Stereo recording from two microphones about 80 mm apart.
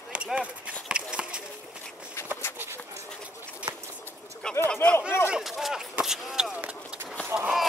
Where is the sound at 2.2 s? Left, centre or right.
Left.